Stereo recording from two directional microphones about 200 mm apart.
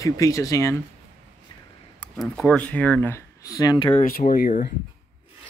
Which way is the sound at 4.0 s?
45° left (ahead or behind).